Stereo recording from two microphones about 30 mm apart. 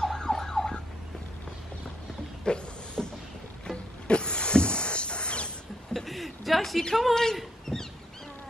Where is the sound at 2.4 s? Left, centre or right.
Left.